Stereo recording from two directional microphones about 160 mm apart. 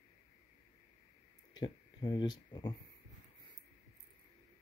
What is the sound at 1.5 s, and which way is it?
Speech, 30° left (ahead or behind).